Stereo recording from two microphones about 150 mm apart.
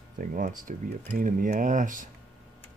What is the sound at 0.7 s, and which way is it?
Speech, 65° right (ahead or behind).